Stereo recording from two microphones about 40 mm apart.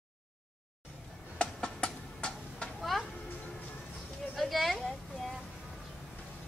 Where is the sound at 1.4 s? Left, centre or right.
Left.